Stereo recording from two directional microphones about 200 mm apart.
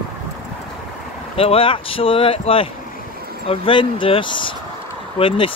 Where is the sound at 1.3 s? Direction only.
30° left (ahead or behind).